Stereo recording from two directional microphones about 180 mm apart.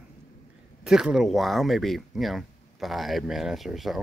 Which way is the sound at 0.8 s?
5° right (ahead or behind).